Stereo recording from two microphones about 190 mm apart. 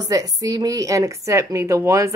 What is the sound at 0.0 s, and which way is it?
A woman's voice, 20° right (ahead or behind).